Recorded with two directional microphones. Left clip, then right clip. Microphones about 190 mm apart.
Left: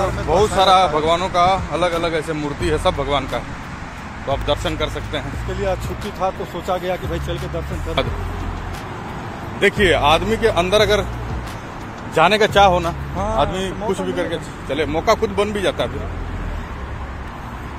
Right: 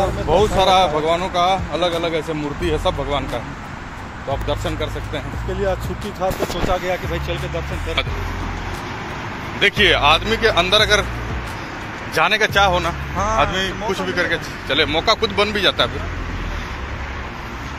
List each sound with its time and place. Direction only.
0.3 s speech: centre (ahead or behind); by 5.2 s 20° left (ahead or behind)
6.2 s speech: 5° left (ahead or behind)
9.6 s speech: 20° left (ahead or behind)
12.2 s speech: 25° left (ahead or behind)